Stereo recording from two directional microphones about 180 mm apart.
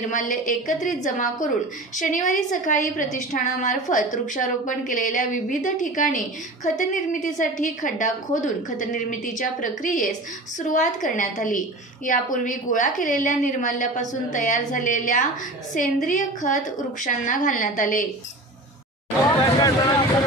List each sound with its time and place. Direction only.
0.1 s a woman's voice: 45° left (ahead or behind)
19.6 s speech: 20° left (ahead or behind)